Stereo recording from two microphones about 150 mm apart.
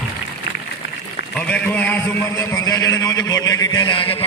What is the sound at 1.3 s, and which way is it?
A man's voice, 10° left (ahead or behind).